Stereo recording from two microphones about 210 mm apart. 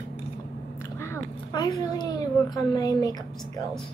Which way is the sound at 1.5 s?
20° left (ahead or behind).